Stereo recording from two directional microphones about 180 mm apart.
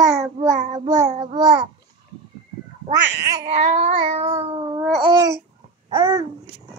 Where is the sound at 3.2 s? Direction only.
20° right (ahead or behind).